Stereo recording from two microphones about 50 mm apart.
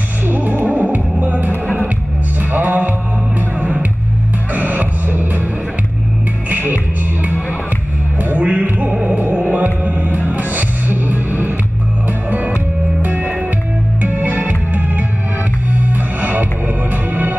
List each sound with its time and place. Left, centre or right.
0.3 s music: right
2.5 s music: right
8.2 s music: right